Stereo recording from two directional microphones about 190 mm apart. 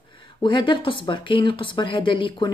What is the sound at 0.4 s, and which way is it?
Speech, 25° left (ahead or behind).